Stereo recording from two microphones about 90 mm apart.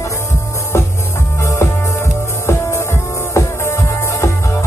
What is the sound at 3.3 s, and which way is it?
Music, 35° left (ahead or behind).